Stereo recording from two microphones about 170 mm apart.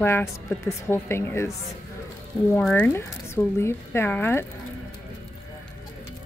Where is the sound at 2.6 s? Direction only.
10° left (ahead or behind).